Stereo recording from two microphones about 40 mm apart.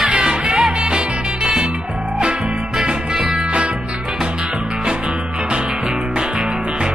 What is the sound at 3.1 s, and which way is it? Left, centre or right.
Music, centre.